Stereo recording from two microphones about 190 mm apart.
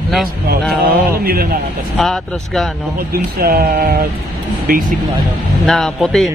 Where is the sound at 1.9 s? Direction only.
Centre (ahead or behind).